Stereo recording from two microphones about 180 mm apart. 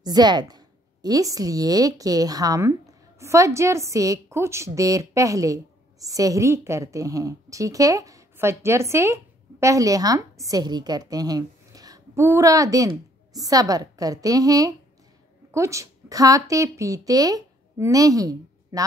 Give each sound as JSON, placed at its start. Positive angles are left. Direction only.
{"t": 0.0, "sound": "a woman's voice", "side_deg": -20}